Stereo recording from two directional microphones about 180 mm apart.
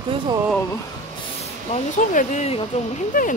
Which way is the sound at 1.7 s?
45° left (ahead or behind).